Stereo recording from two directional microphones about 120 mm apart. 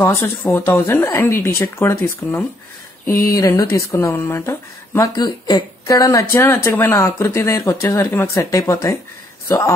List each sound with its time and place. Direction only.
0.0 s speech: 20° left (ahead or behind)
5.1 s speech: 35° left (ahead or behind)